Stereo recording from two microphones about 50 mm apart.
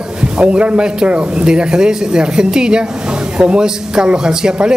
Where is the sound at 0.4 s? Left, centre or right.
Right.